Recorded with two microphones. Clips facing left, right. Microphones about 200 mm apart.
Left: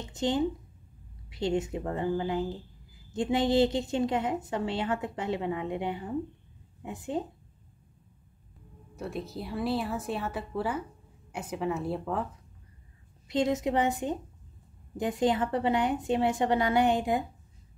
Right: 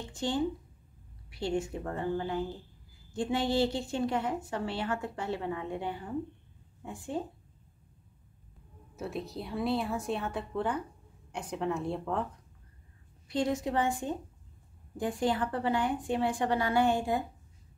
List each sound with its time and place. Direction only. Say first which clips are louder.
0.0 s a woman's voice: left 3 dB; 20° left (ahead or behind)
8.9 s speech: left 1 dB; centre (ahead or behind)
13.3 s a woman's voice: left 3 dB; 20° left (ahead or behind)